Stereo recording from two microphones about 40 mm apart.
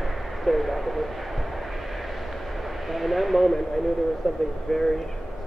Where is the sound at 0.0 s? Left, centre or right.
Centre.